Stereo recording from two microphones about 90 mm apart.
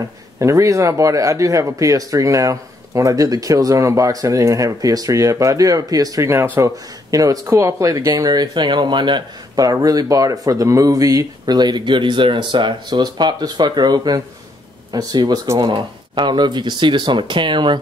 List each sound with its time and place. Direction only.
0.4 s speech: 35° right (ahead or behind)
6.3 s speech: 25° right (ahead or behind)
7.1 s speech: 40° right (ahead or behind)
15.4 s speech: 35° right (ahead or behind)
15.7 s speech: 55° right (ahead or behind)